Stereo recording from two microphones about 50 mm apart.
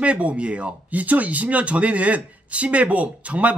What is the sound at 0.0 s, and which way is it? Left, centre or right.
Speech, right.